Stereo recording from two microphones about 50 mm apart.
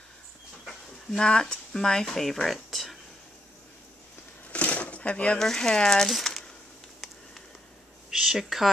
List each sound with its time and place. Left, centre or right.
0.7 s speech: centre
4.5 s a sound: left
5.4 s speech: centre
8.1 s speech: centre